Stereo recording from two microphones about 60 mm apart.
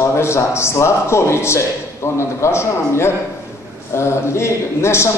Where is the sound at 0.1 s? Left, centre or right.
Left.